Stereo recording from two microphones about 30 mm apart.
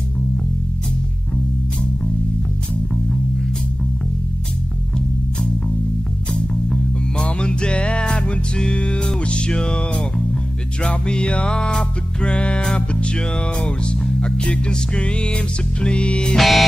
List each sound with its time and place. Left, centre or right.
7.2 s music: left
10.8 s speech: left
16.3 s music: centre